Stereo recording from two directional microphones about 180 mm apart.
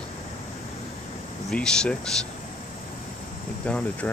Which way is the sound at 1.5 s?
5° left (ahead or behind).